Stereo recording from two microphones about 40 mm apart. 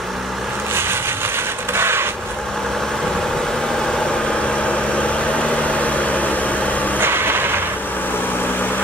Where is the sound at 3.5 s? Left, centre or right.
Centre; by 7.0 s left.